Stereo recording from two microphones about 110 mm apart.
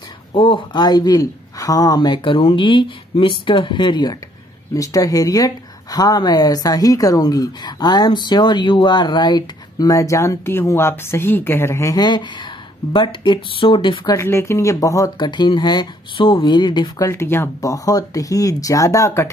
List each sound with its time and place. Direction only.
0.3 s speech: 50° left (ahead or behind)
4.7 s speech: 30° left (ahead or behind); by 13.9 s 50° left (ahead or behind)
14.2 s speech: 25° left (ahead or behind)
15.1 s speech: 45° left (ahead or behind)
17.1 s speech: 25° left (ahead or behind)